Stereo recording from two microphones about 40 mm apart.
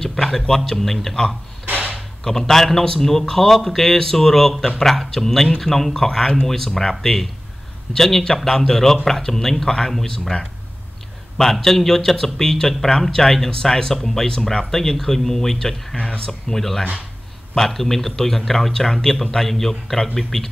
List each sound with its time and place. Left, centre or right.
0.0 s a sound: centre
2.0 s speech: centre
11.6 s speech: centre